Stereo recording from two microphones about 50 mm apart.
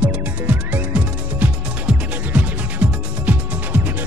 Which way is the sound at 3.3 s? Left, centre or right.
Right.